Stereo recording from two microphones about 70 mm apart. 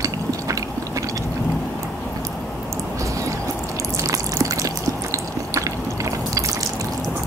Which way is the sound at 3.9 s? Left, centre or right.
Right.